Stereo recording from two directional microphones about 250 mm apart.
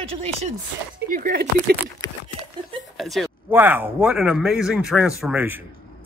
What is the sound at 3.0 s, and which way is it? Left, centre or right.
A man's voice, centre.